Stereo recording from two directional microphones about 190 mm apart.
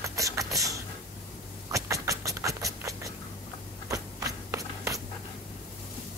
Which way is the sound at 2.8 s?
15° right (ahead or behind).